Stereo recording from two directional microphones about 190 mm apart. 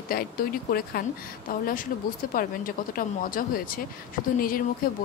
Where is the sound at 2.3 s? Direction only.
45° left (ahead or behind).